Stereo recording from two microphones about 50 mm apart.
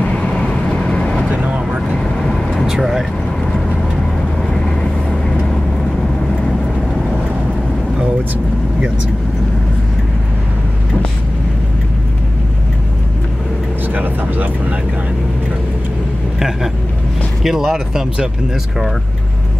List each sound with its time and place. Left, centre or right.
0.0 s vehicle: left
1.3 s vehicle: right
2.6 s vehicle: centre
4.4 s vehicle: centre
13.9 s vehicle: right
16.3 s vehicle: centre
17.4 s speech: centre